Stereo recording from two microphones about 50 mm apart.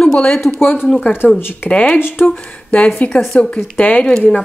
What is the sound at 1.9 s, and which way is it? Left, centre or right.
Speech, left.